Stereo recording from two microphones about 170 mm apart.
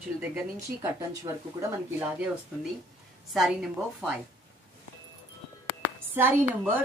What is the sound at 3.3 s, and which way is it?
Speech, centre (ahead or behind).